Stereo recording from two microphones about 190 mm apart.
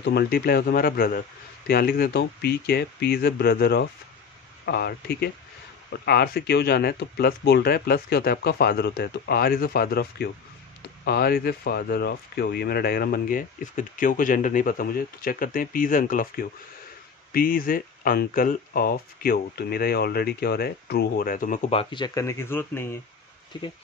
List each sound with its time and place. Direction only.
0.0 s speech: 55° left (ahead or behind)
21.6 s speech: 30° left (ahead or behind); by 22.9 s 10° left (ahead or behind)
23.5 s speech: 25° left (ahead or behind)